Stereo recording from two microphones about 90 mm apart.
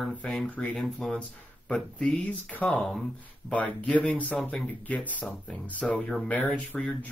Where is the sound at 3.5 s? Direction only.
15° left (ahead or behind).